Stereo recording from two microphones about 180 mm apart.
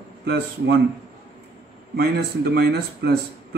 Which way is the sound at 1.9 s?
60° right (ahead or behind).